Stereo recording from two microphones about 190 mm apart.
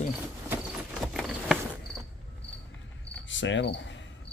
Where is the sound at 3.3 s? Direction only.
75° left (ahead or behind).